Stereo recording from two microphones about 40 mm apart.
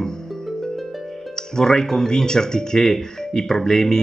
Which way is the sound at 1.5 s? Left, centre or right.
Centre.